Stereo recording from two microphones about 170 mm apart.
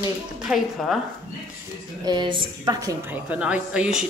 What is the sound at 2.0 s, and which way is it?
Speech, 25° right (ahead or behind).